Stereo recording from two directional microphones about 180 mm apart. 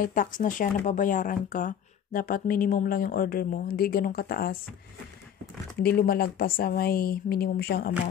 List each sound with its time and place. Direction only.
0.0 s speech: 50° left (ahead or behind)
5.8 s a woman's voice: 60° left (ahead or behind)